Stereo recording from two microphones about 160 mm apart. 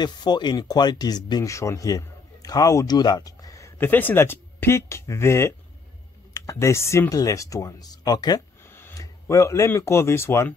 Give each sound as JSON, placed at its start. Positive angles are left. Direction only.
{"t": 0.0, "sound": "speech", "side_deg": 25}